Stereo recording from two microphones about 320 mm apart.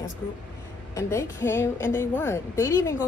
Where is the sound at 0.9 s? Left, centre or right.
Centre.